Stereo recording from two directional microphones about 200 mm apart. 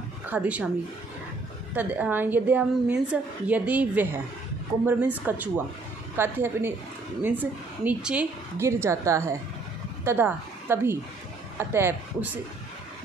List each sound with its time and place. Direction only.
0.3 s a woman's voice: 10° right (ahead or behind)
1.7 s a woman's voice: 10° right (ahead or behind)